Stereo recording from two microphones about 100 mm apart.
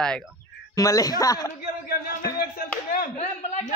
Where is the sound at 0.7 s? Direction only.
35° left (ahead or behind).